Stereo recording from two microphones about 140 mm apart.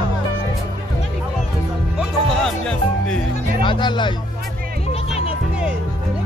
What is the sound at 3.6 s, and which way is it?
Speech, 35° left (ahead or behind).